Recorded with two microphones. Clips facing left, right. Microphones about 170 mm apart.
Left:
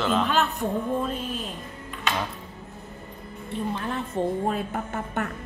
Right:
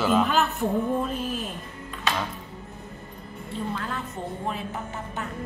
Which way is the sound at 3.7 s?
20° left (ahead or behind).